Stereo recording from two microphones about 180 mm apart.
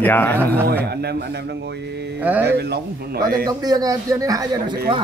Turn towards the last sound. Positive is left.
turn(degrees=-25)  # may be behind; listen again after turning